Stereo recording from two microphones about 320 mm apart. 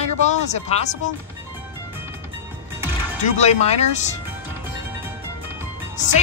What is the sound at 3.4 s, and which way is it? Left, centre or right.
Speech, left.